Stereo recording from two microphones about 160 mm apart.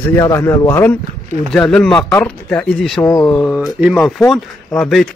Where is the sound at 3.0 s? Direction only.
15° left (ahead or behind).